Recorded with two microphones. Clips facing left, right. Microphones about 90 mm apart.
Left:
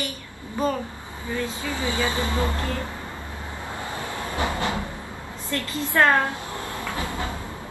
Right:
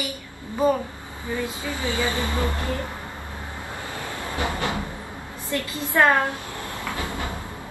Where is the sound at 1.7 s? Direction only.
20° left (ahead or behind).